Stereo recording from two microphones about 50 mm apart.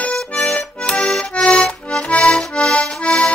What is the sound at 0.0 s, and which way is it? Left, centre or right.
Accordion, left.